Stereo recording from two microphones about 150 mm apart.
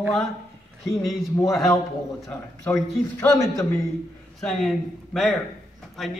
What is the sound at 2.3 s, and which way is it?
A man's voice, 15° left (ahead or behind).